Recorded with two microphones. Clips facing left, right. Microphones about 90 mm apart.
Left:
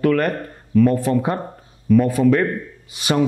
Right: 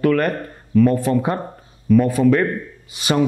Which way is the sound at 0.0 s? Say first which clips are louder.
Even; 20° right (ahead or behind).